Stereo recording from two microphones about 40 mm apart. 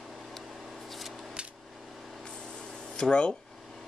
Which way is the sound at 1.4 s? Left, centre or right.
Right.